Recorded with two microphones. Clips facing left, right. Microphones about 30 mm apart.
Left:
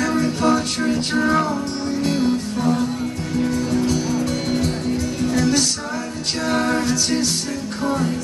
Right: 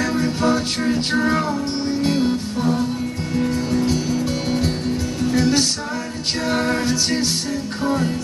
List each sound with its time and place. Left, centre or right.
0.1 s music: centre
3.5 s music: right